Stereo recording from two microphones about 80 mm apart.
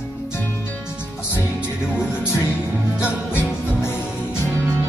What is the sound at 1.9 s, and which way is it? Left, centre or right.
Music, left.